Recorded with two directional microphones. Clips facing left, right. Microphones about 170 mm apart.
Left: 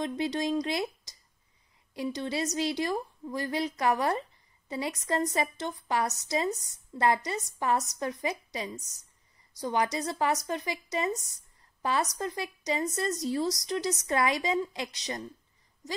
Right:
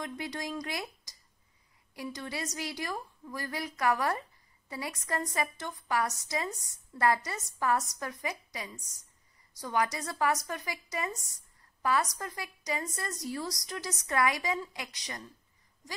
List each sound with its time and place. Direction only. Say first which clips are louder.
0.0 s a woman's voice: left 8 dB; 25° left (ahead or behind)